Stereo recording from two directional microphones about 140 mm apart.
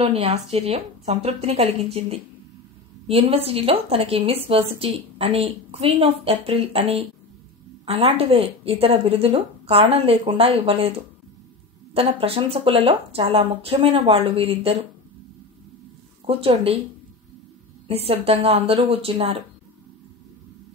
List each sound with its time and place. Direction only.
0.0 s a woman's voice: 45° right (ahead or behind)
16.3 s a woman's voice: 45° right (ahead or behind)
17.8 s a woman's voice: 45° right (ahead or behind)